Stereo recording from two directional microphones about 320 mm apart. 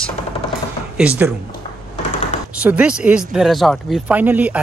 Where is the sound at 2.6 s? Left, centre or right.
Centre.